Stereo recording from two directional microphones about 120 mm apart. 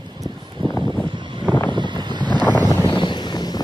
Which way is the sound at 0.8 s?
40° right (ahead or behind).